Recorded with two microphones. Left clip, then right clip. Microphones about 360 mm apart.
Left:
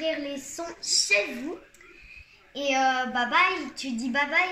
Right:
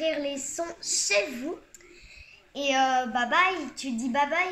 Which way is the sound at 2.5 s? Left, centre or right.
Centre.